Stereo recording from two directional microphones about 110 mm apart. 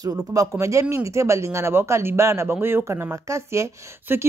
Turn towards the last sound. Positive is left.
turn(degrees=-25)  # may be behind; listen again after turning